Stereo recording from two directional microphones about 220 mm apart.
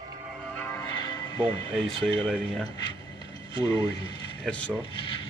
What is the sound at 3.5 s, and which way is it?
Speech, 20° left (ahead or behind).